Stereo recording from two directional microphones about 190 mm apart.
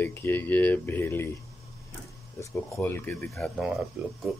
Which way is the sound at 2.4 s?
15° left (ahead or behind).